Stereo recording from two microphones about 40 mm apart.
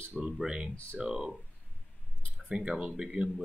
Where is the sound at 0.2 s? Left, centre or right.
Centre.